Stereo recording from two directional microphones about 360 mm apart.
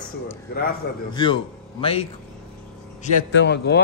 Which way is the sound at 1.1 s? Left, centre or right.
Centre.